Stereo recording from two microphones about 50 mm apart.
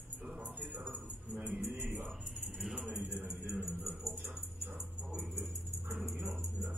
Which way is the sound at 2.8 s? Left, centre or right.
Right.